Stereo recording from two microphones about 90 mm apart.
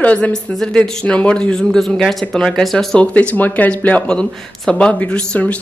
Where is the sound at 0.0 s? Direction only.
15° left (ahead or behind).